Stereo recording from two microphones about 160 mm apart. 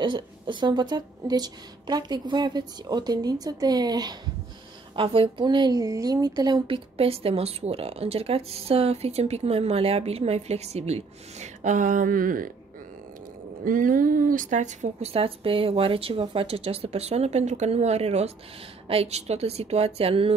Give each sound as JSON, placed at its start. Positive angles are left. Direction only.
{"t": 0.0, "sound": "a woman's voice", "side_deg": -30}
{"t": 13.7, "sound": "a woman's voice", "side_deg": -60}